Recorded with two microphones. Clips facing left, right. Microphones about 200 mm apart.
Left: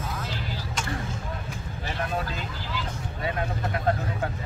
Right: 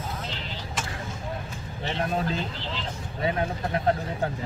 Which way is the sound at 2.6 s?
25° right (ahead or behind).